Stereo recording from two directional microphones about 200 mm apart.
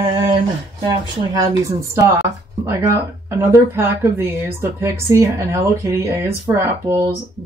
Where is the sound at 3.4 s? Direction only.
15° right (ahead or behind).